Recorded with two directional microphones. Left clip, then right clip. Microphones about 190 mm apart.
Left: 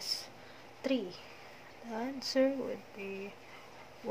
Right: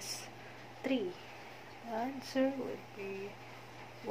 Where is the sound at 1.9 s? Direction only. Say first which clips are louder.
Left 1 dB; 25° left (ahead or behind).